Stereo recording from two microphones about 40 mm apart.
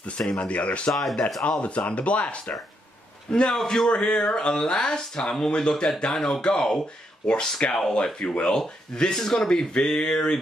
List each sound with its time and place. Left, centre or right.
0.3 s speech: left
0.9 s mantra: centre
1.6 s speech: left
3.3 s speech: left
3.6 s mantra: centre
3.9 s speech: left
10.1 s mantra: centre